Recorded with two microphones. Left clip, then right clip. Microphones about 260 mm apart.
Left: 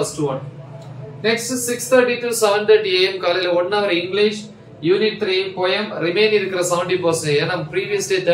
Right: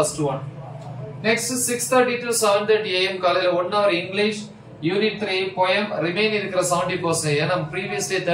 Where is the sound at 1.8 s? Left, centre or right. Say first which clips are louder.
Left 4 dB; centre.